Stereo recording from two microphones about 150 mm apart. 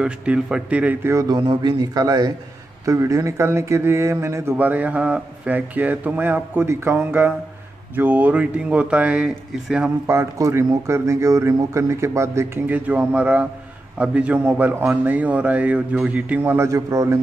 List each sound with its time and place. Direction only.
0.0 s speech: 5° right (ahead or behind)
1.3 s a man's voice: 30° right (ahead or behind); by 9.8 s 10° right (ahead or behind)
10.0 s speech: 20° right (ahead or behind)